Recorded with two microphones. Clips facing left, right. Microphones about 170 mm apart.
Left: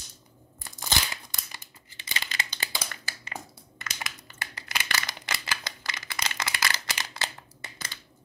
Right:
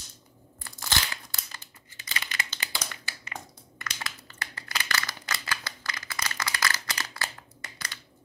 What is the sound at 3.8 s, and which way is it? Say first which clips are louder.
Crushing: even; 15° left (ahead or behind).